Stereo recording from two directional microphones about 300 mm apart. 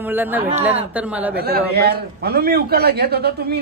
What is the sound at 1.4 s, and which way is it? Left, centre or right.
A man's voice, right.